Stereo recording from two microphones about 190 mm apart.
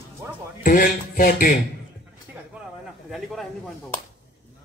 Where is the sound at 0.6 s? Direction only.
45° left (ahead or behind).